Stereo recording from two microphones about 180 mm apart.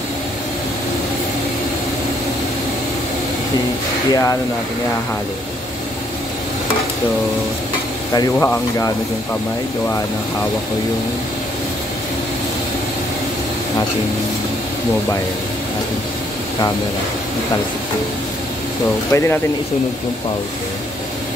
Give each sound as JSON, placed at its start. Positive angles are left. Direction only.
{"t": 4.1, "sound": "speech", "side_deg": 20}
{"t": 8.1, "sound": "speech", "side_deg": 20}
{"t": 19.1, "sound": "speech", "side_deg": 15}